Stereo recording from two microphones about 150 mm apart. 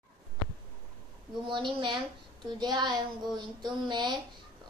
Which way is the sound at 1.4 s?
35° right (ahead or behind).